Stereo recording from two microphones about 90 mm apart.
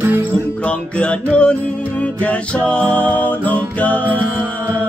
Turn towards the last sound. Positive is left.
turn(degrees=15)  # may be behind; listen again after turning